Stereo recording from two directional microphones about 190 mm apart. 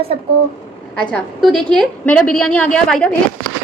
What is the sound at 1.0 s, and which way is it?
A woman's voice, 5° left (ahead or behind).